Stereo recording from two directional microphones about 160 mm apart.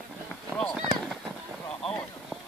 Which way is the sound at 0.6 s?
5° left (ahead or behind).